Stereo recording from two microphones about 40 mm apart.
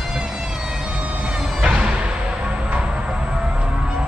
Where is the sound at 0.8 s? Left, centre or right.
Right.